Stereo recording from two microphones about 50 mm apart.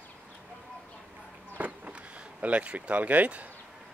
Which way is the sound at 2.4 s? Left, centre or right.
Right.